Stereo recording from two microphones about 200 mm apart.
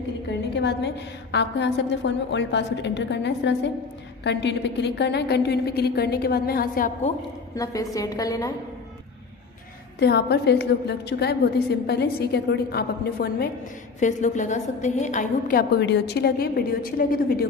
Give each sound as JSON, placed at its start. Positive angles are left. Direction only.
{"t": 0.6, "sound": "a woman's voice", "side_deg": 60}
{"t": 7.5, "sound": "a woman's voice", "side_deg": 15}
{"t": 9.9, "sound": "a woman's voice", "side_deg": 55}
{"t": 13.9, "sound": "a woman's voice", "side_deg": 40}
{"t": 15.8, "sound": "a woman's voice", "side_deg": 60}